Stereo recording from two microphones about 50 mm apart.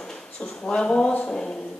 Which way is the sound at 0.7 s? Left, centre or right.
Left.